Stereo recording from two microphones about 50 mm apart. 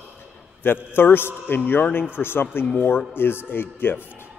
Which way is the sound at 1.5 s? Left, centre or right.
Left.